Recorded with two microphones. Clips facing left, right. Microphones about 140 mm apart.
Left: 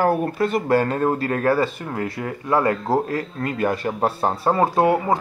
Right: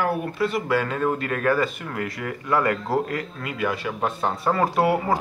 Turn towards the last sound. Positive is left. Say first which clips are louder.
# left 3 dB
turn(degrees=25)  # may be behind; listen again after turning